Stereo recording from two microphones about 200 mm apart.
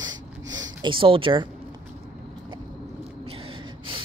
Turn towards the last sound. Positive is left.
turn(degrees=-30)  # may be behind; listen again after turning